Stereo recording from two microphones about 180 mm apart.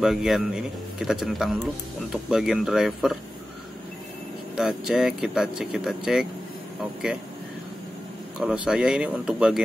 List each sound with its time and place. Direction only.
0.0 s speech: centre (ahead or behind)
4.6 s speech: 5° right (ahead or behind)
8.4 s speech: 5° right (ahead or behind)